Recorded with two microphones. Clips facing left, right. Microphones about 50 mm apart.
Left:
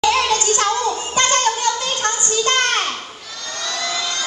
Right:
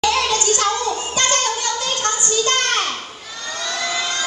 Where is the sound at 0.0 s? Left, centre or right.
Left.